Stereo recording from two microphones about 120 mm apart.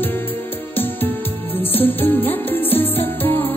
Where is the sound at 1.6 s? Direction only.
15° left (ahead or behind).